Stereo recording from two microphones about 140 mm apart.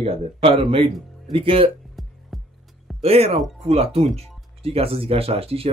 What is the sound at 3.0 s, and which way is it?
Speech, 45° right (ahead or behind).